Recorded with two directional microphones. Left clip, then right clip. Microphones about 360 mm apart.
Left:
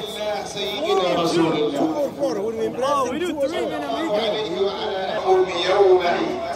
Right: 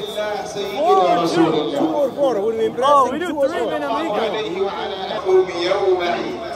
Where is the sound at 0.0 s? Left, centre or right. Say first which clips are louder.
Right 3 dB; centre.